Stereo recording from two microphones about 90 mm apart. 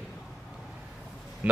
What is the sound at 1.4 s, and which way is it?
Speech, 15° right (ahead or behind).